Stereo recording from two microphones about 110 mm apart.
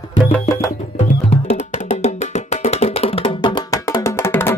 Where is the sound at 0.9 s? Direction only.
80° left; by 3.4 s 60° left (ahead or behind).